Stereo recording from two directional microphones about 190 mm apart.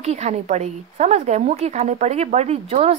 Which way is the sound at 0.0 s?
35° right (ahead or behind).